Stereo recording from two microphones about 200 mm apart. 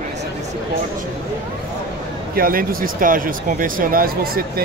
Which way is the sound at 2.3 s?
45° right (ahead or behind).